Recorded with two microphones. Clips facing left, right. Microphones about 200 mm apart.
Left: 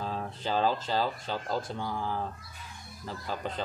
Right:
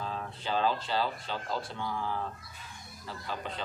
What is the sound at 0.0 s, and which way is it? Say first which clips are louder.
A man's voice: left 3 dB; 40° left (ahead or behind).